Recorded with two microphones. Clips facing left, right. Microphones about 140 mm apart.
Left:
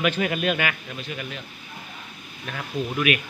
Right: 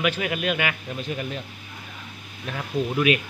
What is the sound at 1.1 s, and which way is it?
Speech, 35° right (ahead or behind).